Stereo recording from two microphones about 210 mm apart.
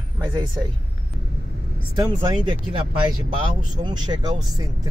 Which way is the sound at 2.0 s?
20° right (ahead or behind).